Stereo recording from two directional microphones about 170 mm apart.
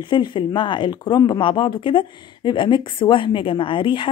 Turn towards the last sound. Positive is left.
turn(degrees=30)  # may be behind; listen again after turning